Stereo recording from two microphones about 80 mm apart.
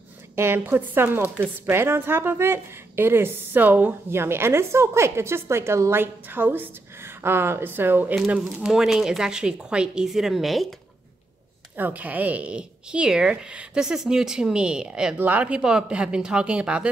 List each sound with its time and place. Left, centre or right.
0.4 s a woman's voice: right
8.6 s a woman's voice: centre
11.7 s speech: right
15.1 s speech: right